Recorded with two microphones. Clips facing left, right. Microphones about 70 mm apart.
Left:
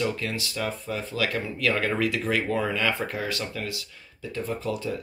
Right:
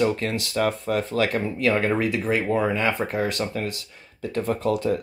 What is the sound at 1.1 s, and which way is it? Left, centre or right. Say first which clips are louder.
Speech: right 5 dB; right.